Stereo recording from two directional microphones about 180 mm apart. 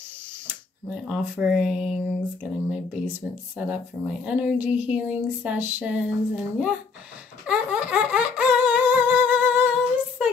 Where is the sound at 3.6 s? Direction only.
5° right (ahead or behind).